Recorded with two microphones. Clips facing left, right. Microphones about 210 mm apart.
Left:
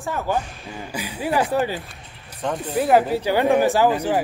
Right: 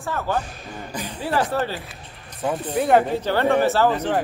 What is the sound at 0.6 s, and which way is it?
Speech, 5° left (ahead or behind).